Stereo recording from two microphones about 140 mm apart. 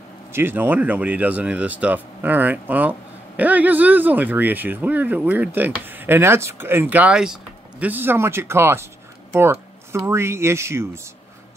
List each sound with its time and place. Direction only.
0.3 s speech: 15° right (ahead or behind)